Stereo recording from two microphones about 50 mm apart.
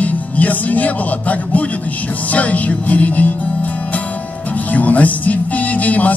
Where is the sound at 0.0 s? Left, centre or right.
Left.